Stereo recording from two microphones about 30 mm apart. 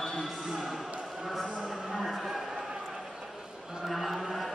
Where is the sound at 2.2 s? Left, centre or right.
Centre.